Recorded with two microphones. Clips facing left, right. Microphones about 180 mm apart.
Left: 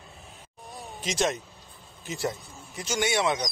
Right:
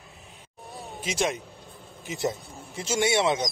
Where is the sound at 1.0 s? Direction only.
10° right (ahead or behind).